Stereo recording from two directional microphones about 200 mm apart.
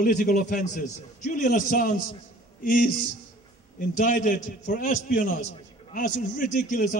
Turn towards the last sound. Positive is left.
turn(degrees=45)  # may be behind; listen again after turning